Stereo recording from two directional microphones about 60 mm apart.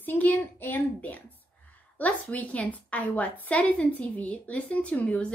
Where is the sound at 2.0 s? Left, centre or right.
Left.